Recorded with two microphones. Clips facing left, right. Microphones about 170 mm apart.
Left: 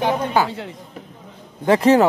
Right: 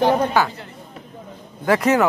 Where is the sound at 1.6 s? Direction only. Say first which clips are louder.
Left 3 dB; 25° left (ahead or behind).